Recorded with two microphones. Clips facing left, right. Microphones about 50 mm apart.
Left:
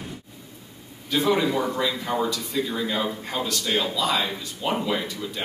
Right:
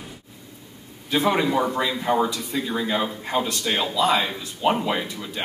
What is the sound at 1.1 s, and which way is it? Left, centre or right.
Speech, right.